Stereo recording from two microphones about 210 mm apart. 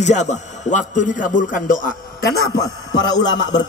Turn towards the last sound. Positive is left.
turn(degrees=20)  # may be behind; listen again after turning